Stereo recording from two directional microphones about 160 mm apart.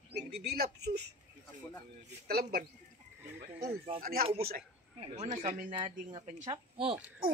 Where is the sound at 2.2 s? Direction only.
70° right (ahead or behind).